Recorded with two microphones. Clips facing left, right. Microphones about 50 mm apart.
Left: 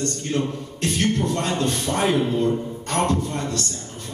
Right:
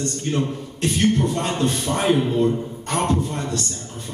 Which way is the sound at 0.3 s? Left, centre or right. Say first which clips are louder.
Right 2 dB; right.